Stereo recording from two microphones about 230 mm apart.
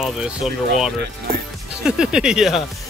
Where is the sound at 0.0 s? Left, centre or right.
Centre.